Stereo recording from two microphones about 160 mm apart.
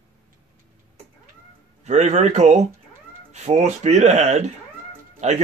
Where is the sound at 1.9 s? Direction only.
45° right (ahead or behind).